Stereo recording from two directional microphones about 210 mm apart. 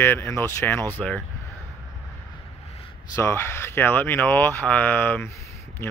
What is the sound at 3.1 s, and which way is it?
Speech, 10° left (ahead or behind).